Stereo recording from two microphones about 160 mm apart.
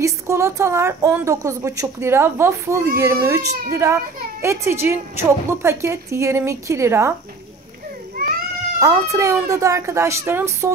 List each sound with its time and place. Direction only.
0.0 s a woman's voice: 20° right (ahead or behind)
8.7 s a woman's voice: 20° right (ahead or behind)